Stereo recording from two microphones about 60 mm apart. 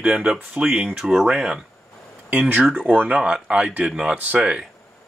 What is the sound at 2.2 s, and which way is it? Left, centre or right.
Speech, right.